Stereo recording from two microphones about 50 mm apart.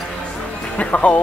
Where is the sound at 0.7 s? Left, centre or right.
Left.